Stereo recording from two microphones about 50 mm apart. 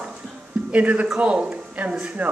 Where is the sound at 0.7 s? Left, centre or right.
Right.